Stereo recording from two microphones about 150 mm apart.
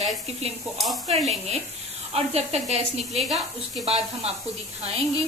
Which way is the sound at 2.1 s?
45° right (ahead or behind).